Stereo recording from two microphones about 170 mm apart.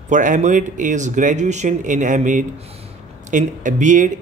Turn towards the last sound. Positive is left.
turn(degrees=-50)  # may be behind; listen again after turning